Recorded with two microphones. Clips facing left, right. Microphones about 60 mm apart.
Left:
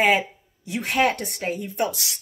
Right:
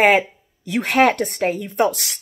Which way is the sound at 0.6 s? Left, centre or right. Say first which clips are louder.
Right 6 dB; right.